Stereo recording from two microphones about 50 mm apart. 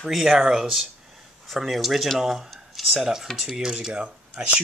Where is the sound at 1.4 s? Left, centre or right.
Centre.